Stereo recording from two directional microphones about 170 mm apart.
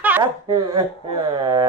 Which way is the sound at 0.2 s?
30° right (ahead or behind).